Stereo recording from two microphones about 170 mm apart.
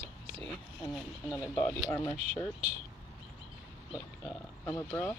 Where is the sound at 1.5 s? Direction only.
15° left (ahead or behind).